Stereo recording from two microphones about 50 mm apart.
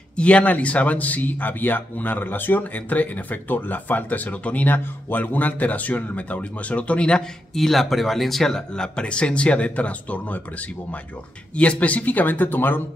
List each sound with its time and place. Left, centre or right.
0.1 s speech: left
7.5 s speech: centre; by 10.4 s left
11.5 s speech: left